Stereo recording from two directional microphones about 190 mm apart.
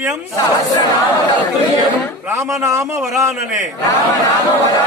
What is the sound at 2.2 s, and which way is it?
Speech, 15° right (ahead or behind).